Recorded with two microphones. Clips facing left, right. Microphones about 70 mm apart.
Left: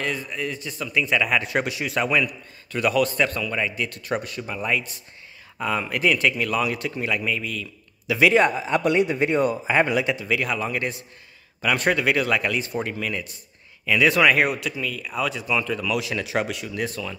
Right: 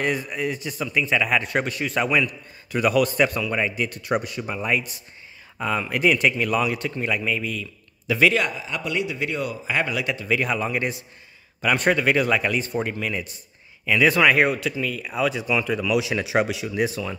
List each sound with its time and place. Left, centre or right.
0.0 s a man's voice: centre
8.1 s speech: centre
8.4 s a man's voice: left
10.2 s speech: centre